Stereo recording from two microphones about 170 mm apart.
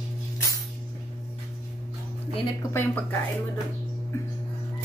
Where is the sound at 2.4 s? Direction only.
15° left (ahead or behind).